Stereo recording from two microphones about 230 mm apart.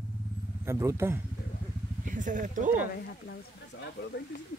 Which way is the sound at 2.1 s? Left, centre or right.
Right.